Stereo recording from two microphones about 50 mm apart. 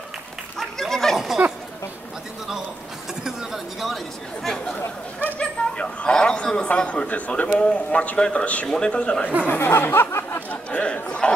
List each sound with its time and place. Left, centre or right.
0.6 s goat: centre
1.1 s goat: centre
3.3 s chatter: centre
4.7 s chatter: left
5.4 s a man's voice: left
9.5 s speech: left
10.5 s a man's voice: left